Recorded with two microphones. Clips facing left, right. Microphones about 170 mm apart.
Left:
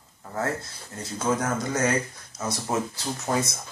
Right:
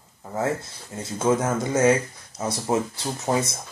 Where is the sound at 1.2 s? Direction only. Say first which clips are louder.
Right 4 dB; 25° right (ahead or behind).